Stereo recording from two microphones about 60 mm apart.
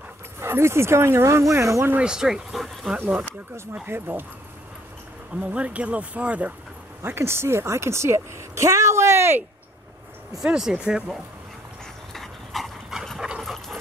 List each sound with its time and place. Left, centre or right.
0.4 s a woman's voice: right
2.0 s speech: centre
2.5 s speech: centre
3.8 s speech: right
5.3 s speech: right
7.0 s a woman's voice: right
10.4 s speech: centre
12.1 s dog: centre